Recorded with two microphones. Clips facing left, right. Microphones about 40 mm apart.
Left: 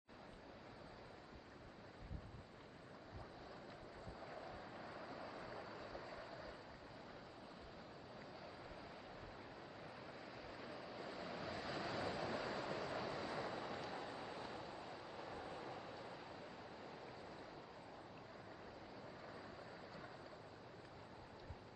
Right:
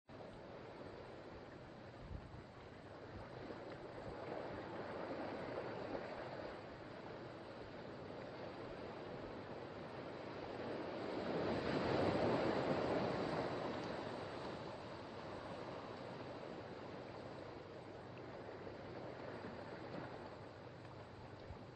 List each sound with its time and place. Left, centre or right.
4.3 s stream: centre
5.9 s a sound: centre
9.9 s waves: centre